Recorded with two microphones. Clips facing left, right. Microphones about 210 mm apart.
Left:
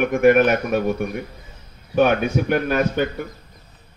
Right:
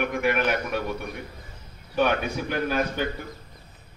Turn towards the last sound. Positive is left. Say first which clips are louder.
# left 6 dB
turn(degrees=60)  # may be behind; listen again after turning